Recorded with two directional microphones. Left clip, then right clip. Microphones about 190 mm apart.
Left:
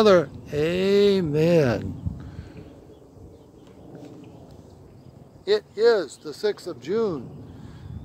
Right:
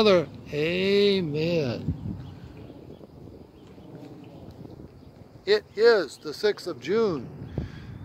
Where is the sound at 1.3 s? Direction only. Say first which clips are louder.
Left 7 dB; 35° left (ahead or behind).